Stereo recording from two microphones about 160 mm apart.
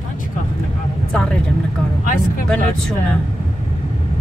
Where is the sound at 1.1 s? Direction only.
5° left (ahead or behind).